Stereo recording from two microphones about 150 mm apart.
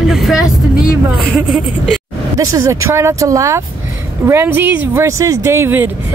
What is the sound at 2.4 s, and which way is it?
Speech, 20° right (ahead or behind).